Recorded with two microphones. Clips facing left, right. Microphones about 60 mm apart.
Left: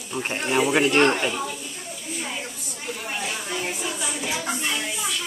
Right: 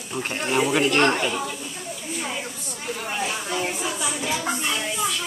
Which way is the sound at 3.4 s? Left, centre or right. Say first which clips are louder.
Right 2 dB; centre.